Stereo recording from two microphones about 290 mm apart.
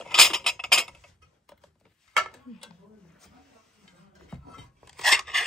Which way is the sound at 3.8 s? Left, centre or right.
Centre.